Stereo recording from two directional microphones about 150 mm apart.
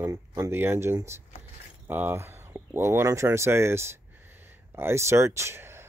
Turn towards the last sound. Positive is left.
turn(degrees=-15)  # may be behind; listen again after turning